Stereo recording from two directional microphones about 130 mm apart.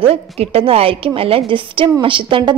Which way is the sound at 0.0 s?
50° right (ahead or behind).